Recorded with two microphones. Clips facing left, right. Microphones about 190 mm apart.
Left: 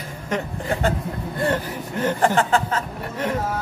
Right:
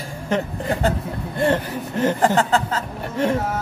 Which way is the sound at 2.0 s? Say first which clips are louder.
Right 1 dB; 35° right (ahead or behind).